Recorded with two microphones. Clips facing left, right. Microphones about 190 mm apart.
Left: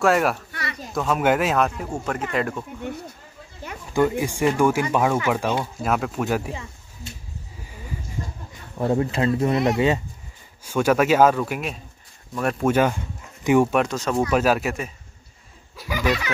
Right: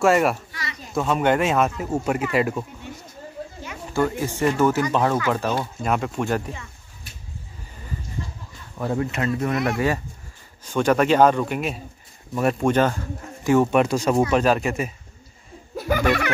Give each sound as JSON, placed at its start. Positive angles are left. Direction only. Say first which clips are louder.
{"t": 0.0, "sound": "speech", "louder": "right 1 dB", "side_deg": 0}
{"t": 0.5, "sound": "a sound", "louder": "left 3 dB", "side_deg": 55}
{"t": 0.9, "sound": "speech", "louder": "right 1 dB", "side_deg": 0}
{"t": 2.8, "sound": "a sound", "louder": "left 7 dB", "side_deg": 60}
{"t": 3.4, "sound": "a sound", "louder": "right 14 dB", "side_deg": -40}
{"t": 3.9, "sound": "speech", "louder": "left 2 dB", "side_deg": 15}
{"t": 5.9, "sound": "speech", "louder": "even", "side_deg": 0}
{"t": 7.1, "sound": "a sound", "louder": "left 6 dB", "side_deg": 25}
{"t": 8.7, "sound": "speech", "louder": "left 3 dB", "side_deg": 25}
{"t": 10.6, "sound": "speech", "louder": "even", "side_deg": 10}
{"t": 13.7, "sound": "speech", "louder": "right 2 dB", "side_deg": 0}
{"t": 13.9, "sound": "speech", "louder": "right 4 dB", "side_deg": -10}
{"t": 14.3, "sound": "speech", "louder": "right 1 dB", "side_deg": 5}
{"t": 15.7, "sound": "speech", "louder": "right 3 dB", "side_deg": -50}